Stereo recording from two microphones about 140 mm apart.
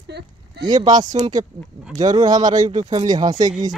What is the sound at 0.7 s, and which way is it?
Speech, 30° right (ahead or behind).